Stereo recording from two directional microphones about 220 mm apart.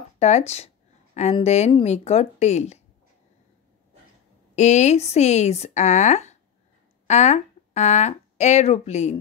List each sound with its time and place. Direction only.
0.2 s speech: 30° left (ahead or behind)
4.6 s speech: 30° left (ahead or behind)